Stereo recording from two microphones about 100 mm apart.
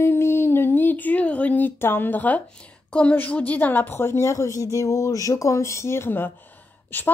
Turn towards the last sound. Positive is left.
turn(degrees=20)  # may be behind; listen again after turning